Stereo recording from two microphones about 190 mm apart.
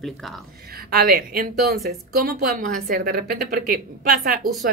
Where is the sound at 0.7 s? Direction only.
55° right (ahead or behind).